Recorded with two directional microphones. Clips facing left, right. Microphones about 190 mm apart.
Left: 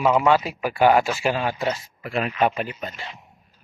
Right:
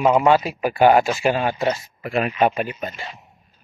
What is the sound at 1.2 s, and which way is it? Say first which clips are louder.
Speech: right 3 dB; 50° right (ahead or behind).